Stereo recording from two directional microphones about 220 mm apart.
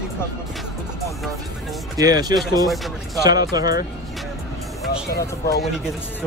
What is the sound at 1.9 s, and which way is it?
Speech, 15° right (ahead or behind).